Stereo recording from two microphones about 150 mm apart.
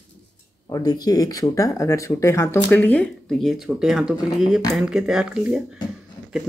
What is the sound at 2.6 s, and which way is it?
Speech, 10° left (ahead or behind).